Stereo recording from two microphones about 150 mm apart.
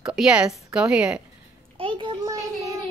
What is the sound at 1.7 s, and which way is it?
Speech, 35° right (ahead or behind).